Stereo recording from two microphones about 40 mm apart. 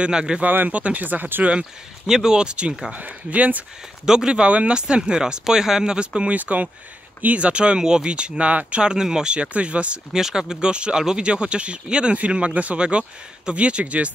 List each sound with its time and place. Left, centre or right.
0.0 s speech: right
0.7 s speech: right
1.4 s speech: right
2.0 s speech: centre
2.3 s speech: right
2.9 s speech: right
4.0 s speech: centre
6.3 s speech: right
8.9 s speech: centre
9.3 s speech: right
10.1 s speech: centre; by 14.1 s right